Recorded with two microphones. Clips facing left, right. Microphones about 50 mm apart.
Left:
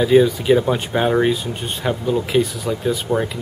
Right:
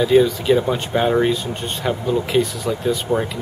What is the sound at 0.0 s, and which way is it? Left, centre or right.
Speech, centre.